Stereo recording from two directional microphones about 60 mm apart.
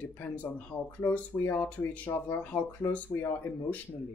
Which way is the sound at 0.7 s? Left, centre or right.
Left.